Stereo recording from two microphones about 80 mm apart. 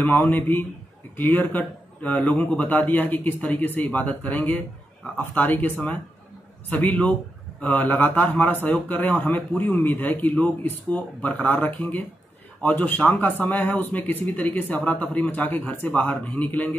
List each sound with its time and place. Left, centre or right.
0.0 s speech: left